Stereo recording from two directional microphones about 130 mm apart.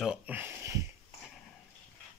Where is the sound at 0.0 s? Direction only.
10° right (ahead or behind).